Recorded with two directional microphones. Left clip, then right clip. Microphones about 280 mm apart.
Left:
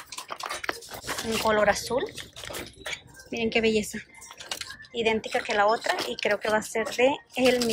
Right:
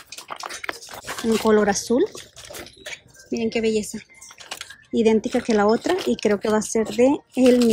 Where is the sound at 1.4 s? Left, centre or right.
Right.